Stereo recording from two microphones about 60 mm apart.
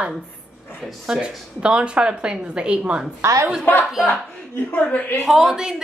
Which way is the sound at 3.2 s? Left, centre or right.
Right.